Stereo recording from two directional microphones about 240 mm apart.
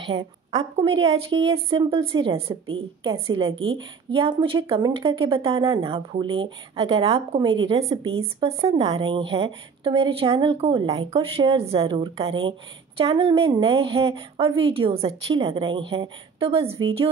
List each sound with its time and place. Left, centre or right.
0.1 s a woman's voice: centre